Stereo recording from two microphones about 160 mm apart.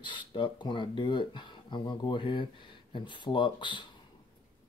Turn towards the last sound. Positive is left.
turn(degrees=30)  # may be behind; listen again after turning